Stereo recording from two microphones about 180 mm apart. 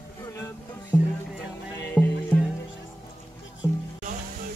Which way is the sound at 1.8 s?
10° left (ahead or behind).